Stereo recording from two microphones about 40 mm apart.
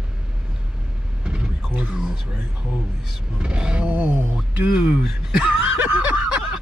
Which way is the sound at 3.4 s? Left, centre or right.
Right.